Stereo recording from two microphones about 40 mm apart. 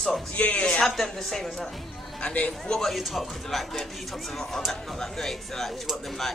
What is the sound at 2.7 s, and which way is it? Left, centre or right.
Speech, centre.